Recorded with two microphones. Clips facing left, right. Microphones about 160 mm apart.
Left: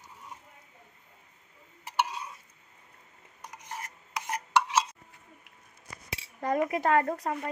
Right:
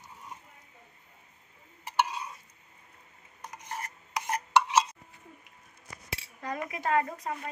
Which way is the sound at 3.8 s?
5° left (ahead or behind).